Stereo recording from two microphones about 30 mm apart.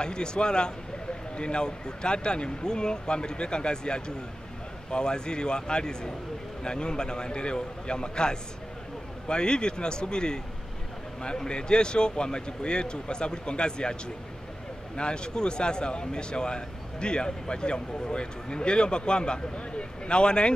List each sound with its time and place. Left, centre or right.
0.0 s a man's voice: left